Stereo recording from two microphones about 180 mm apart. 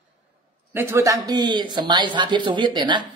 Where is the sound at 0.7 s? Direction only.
15° right (ahead or behind).